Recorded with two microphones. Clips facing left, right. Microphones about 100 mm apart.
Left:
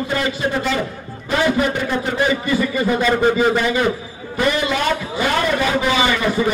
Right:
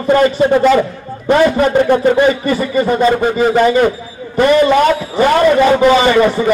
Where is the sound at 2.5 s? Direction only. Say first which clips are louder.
Right 4 dB; 40° right (ahead or behind).